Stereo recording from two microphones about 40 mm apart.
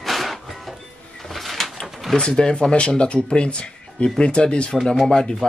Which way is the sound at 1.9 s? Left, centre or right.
Centre.